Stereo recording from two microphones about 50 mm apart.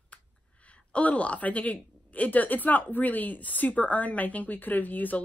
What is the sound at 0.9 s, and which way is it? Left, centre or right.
A woman's voice, left.